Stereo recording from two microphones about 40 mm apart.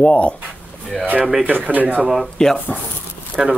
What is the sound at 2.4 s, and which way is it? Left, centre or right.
Speech, centre.